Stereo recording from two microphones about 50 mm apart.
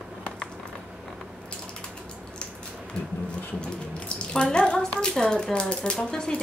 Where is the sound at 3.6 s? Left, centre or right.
Centre.